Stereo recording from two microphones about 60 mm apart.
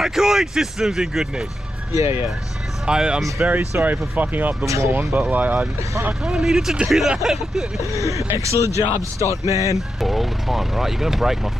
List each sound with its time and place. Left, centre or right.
0.0 s speech: centre
1.9 s speech: right
2.9 s speech: centre
3.4 s speech: right
4.6 s speech: right
4.9 s speech: right
6.2 s speech: centre
7.9 s speech: right
9.8 s speech: centre